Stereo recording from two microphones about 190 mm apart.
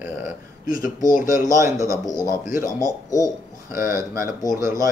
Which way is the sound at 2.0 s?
20° left (ahead or behind).